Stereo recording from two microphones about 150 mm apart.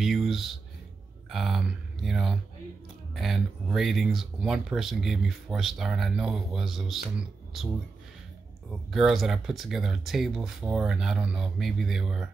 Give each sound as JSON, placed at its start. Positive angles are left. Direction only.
{"t": 0.0, "sound": "a sound", "side_deg": 0}
{"t": 1.3, "sound": "speech", "side_deg": 0}
{"t": 8.9, "sound": "speech", "side_deg": 0}